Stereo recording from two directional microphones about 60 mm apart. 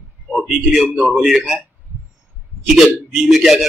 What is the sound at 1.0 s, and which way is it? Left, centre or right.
Speech, centre.